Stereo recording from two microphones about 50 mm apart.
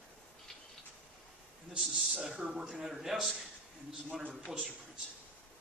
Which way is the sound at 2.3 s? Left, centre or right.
Centre.